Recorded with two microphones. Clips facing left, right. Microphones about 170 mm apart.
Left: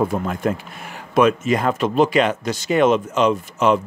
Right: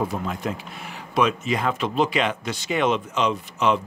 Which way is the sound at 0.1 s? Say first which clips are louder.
Left 6 dB; 50° left (ahead or behind).